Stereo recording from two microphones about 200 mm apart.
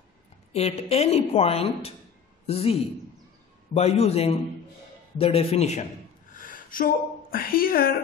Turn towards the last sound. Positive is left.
turn(degrees=45)  # may be behind; listen again after turning